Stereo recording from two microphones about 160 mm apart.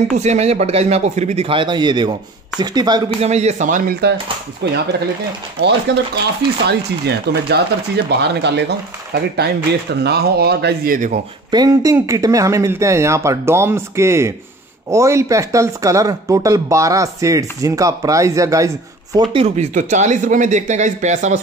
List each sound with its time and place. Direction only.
0.2 s speech: 45° right (ahead or behind); by 3.0 s 25° right (ahead or behind)
3.2 s speech: 45° right (ahead or behind); by 4.1 s 65° right (ahead or behind)
4.6 s speech: 90° right
5.9 s speech: 90° right; by 11.1 s 60° right (ahead or behind)
11.5 s speech: 20° right (ahead or behind)
19.4 s speech: 45° right (ahead or behind)